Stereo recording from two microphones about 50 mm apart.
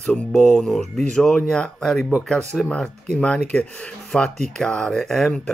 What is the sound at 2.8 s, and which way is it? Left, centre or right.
Speech, centre.